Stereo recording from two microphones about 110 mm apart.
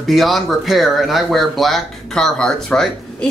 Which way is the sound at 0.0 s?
Centre (ahead or behind).